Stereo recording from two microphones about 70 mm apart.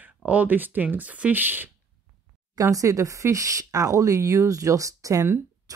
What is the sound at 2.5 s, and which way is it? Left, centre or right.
Speech, right.